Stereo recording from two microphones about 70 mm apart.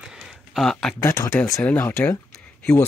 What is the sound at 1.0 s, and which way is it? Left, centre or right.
Speech, left.